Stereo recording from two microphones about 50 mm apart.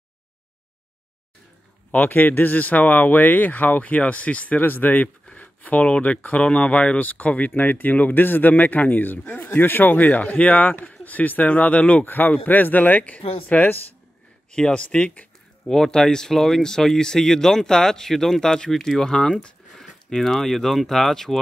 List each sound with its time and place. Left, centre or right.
1.9 s speech: left
4.6 s speech: left
14.5 s speech: centre